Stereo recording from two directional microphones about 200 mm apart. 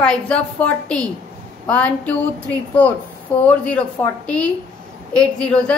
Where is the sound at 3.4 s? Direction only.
5° left (ahead or behind).